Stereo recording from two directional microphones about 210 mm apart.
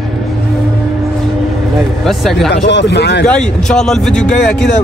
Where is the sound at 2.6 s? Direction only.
55° left (ahead or behind).